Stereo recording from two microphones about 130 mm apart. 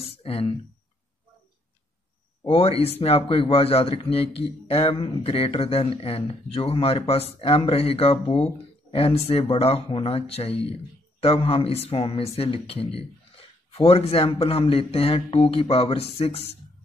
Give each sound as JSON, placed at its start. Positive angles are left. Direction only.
{"t": 0.0, "sound": "speech", "side_deg": 50}
{"t": 2.4, "sound": "speech", "side_deg": 50}